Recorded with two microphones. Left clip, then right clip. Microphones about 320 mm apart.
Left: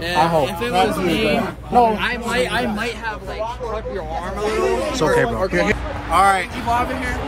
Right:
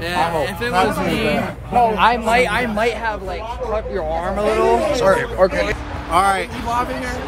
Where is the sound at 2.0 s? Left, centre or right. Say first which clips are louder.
Right 6 dB; centre.